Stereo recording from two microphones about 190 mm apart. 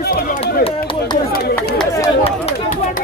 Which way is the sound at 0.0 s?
55° left (ahead or behind).